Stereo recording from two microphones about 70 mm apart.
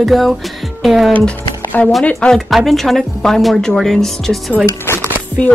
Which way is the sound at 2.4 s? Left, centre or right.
Centre.